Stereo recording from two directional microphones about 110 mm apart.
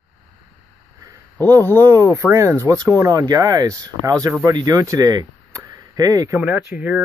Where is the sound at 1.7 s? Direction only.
30° right (ahead or behind).